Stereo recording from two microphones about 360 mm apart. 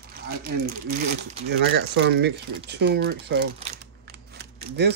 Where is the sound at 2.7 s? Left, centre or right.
Right.